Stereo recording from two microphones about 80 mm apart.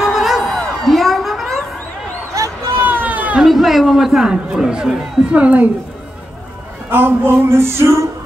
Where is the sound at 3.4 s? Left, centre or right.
Centre.